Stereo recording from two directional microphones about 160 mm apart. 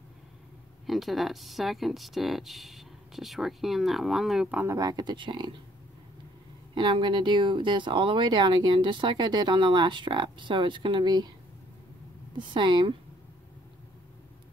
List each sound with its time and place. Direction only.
0.8 s speech: centre (ahead or behind)
4.7 s speech: 25° right (ahead or behind)
6.7 s speech: 30° right (ahead or behind)
12.4 s speech: 30° right (ahead or behind)